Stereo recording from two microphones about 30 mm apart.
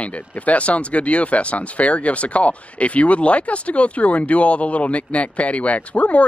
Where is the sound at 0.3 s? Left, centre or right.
Left.